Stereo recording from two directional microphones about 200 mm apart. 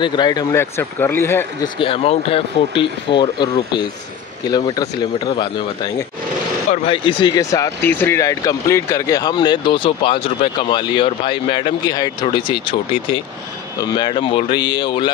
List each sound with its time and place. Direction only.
0.0 s speech: 20° left (ahead or behind)
1.8 s speech: 30° left (ahead or behind)
6.7 s speech: 30° left (ahead or behind)